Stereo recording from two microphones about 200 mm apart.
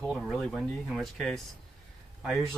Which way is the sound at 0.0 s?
Centre (ahead or behind).